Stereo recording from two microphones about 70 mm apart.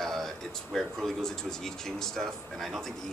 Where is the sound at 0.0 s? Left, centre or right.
Centre.